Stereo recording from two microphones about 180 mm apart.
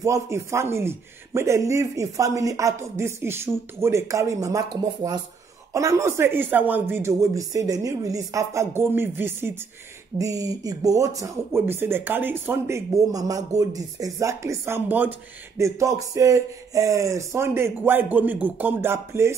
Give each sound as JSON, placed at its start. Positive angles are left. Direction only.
{"t": 0.0, "sound": "speech", "side_deg": -15}